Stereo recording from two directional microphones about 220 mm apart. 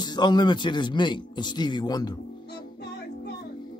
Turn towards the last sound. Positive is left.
turn(degrees=50)  # may be behind; listen again after turning